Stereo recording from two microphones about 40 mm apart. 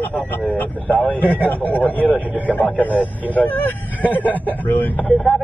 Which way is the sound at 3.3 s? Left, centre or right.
Left.